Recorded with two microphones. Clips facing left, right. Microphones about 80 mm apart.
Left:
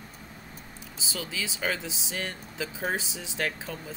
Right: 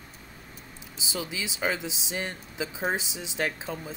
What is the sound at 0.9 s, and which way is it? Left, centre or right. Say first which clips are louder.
Speech: right 1 dB; centre.